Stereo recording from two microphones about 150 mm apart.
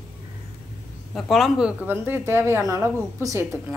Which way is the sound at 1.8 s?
15° right (ahead or behind).